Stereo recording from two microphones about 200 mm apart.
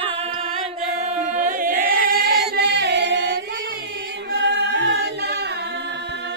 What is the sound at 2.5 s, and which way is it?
Chant, 55° right (ahead or behind).